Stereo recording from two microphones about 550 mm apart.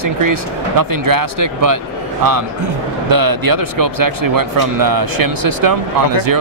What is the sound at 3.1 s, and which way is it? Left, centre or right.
Speech, right.